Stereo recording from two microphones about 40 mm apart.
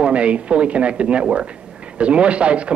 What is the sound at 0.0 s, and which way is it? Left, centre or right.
Speech, right.